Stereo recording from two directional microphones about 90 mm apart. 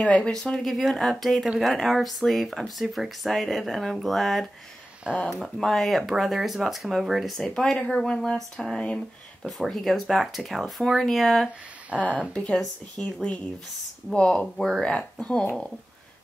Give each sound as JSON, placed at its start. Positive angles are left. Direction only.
{"t": 0.0, "sound": "speech", "side_deg": 10}